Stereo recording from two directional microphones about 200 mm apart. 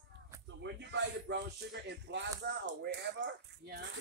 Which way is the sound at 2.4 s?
60° right (ahead or behind).